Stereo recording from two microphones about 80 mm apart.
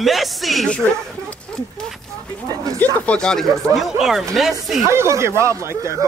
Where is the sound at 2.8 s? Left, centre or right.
Centre.